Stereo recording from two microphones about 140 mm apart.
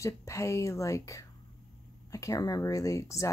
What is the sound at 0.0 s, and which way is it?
Speech, 20° left (ahead or behind).